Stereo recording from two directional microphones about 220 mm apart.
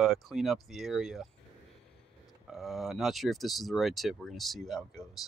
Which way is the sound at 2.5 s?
Centre (ahead or behind).